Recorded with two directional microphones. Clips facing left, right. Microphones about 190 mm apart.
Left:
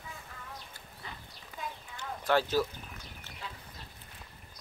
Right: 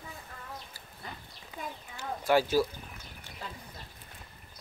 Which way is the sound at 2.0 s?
10° right (ahead or behind).